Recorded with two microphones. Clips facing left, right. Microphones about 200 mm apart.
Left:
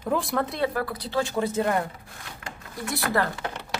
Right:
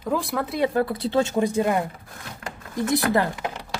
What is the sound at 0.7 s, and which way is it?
Speech, 25° right (ahead or behind).